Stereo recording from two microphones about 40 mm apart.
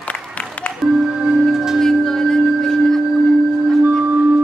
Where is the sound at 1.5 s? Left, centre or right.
Centre.